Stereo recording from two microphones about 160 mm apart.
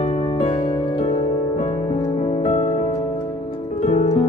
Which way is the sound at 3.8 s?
40° left (ahead or behind).